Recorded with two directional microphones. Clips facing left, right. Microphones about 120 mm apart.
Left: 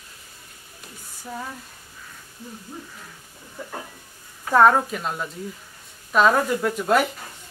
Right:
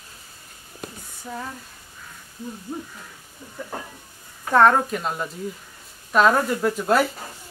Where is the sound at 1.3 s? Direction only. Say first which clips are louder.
Even; centre (ahead or behind).